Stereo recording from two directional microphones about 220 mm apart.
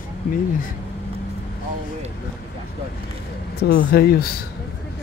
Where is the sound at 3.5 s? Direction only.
45° left (ahead or behind).